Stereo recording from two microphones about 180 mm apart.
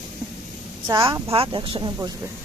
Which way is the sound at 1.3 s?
30° right (ahead or behind).